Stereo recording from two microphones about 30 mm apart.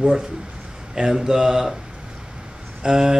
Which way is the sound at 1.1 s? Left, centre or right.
Right.